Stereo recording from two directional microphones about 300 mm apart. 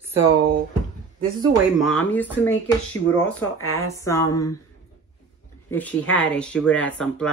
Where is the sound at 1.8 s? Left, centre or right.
Centre.